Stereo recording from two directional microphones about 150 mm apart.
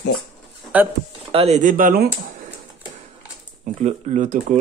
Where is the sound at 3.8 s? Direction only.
55° right (ahead or behind).